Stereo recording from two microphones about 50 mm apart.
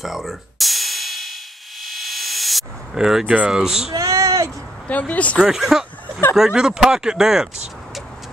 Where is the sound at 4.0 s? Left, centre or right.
Right.